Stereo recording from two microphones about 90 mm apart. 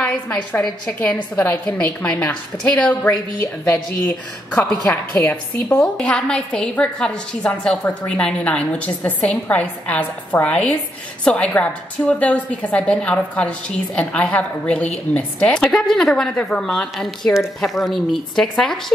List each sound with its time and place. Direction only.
0.0 s a woman's voice: 10° left (ahead or behind)
4.5 s a woman's voice: 10° left (ahead or behind)
5.1 s a woman's voice: 25° left (ahead or behind)
5.8 s a woman's voice: 10° left (ahead or behind)